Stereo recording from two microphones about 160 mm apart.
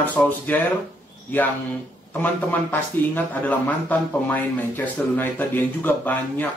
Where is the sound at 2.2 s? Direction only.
10° left (ahead or behind).